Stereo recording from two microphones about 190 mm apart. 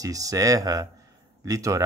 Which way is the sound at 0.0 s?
20° right (ahead or behind).